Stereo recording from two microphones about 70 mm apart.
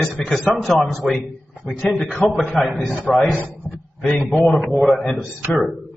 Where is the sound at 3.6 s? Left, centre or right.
Centre.